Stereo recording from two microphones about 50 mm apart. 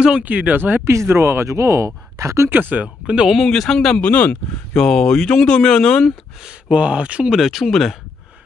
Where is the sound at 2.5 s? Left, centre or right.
Right.